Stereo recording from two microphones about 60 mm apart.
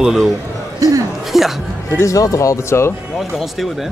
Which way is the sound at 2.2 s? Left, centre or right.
Left.